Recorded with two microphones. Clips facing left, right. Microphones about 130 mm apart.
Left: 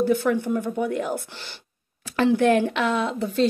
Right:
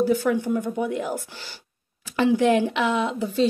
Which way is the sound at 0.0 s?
10° right (ahead or behind).